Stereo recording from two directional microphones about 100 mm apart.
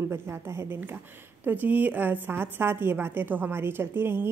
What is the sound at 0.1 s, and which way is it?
A woman's voice, 25° right (ahead or behind).